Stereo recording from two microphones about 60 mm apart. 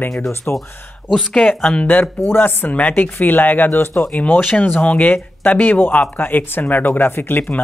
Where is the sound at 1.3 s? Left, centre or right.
Centre.